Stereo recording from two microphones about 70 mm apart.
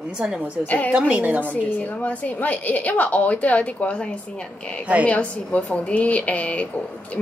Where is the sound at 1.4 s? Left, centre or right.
Left.